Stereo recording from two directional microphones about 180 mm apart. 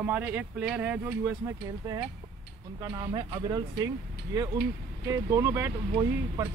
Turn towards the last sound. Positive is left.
turn(degrees=-20)  # may be behind; listen again after turning